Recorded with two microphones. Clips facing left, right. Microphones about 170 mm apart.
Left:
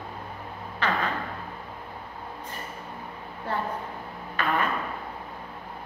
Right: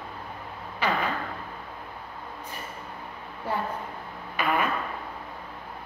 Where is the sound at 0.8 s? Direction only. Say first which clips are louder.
Right 1 dB; 10° right (ahead or behind).